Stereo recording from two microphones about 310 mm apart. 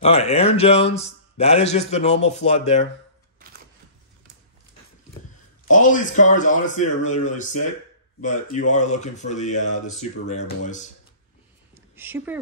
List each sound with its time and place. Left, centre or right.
0.0 s speech: centre
5.7 s speech: left
11.7 s a sound: centre